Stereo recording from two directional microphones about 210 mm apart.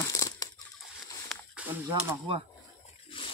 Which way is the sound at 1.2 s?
5° right (ahead or behind).